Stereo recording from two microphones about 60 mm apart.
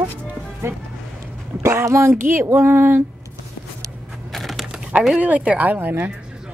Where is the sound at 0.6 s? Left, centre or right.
Right.